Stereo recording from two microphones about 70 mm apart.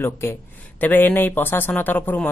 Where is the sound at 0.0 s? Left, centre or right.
Left.